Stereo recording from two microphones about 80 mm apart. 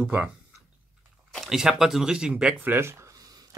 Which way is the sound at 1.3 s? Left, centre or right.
Centre.